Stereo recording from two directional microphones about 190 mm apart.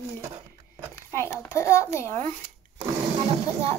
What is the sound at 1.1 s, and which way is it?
A child's voice, 15° left (ahead or behind).